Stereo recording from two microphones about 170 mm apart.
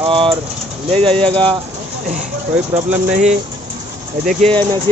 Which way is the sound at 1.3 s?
30° right (ahead or behind).